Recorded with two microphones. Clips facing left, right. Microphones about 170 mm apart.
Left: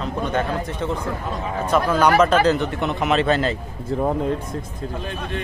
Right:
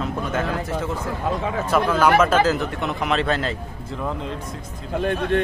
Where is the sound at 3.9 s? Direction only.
45° left (ahead or behind).